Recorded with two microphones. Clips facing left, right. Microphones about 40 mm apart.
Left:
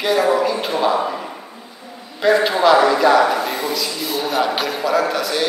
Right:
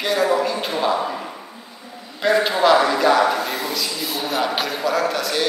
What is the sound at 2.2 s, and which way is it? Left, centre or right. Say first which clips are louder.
A man's voice: left 2 dB; centre.